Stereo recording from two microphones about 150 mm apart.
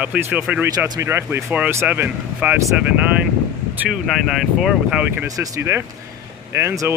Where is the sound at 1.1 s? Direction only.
15° right (ahead or behind).